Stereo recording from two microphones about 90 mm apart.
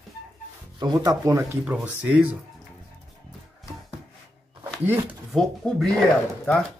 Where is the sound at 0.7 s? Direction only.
55° right (ahead or behind).